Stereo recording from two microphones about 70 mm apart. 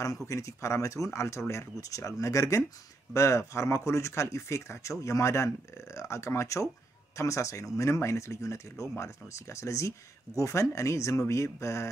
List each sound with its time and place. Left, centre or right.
0.0 s speech: left